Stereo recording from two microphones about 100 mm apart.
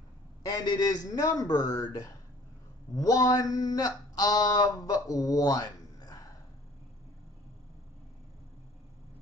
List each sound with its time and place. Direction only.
0.5 s speech: 40° left (ahead or behind)